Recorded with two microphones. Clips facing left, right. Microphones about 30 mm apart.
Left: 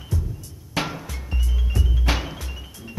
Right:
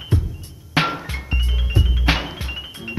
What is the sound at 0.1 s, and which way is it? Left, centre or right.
Music, right.